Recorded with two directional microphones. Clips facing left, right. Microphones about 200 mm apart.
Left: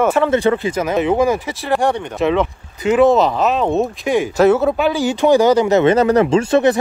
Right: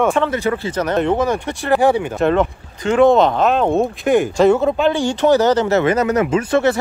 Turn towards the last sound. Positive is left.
turn(degrees=30)  # may be behind; listen again after turning